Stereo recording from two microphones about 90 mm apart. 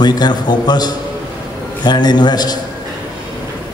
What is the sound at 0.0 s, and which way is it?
A man's voice, 50° left (ahead or behind).